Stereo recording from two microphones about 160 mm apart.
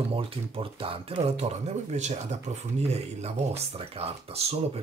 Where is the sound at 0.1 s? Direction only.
35° right (ahead or behind).